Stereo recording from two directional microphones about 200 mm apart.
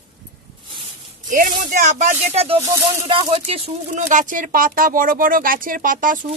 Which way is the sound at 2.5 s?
15° right (ahead or behind).